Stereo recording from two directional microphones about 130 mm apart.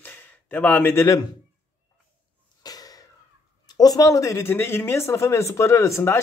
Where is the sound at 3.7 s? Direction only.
30° left (ahead or behind).